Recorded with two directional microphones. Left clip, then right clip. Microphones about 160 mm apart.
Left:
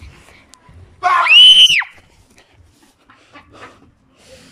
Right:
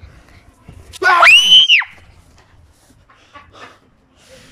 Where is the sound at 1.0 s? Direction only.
90° right.